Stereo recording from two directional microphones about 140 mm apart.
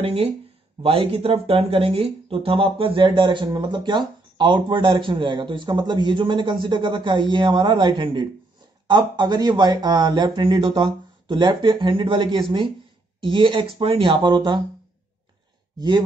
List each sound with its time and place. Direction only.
0.0 s speech: 45° right (ahead or behind)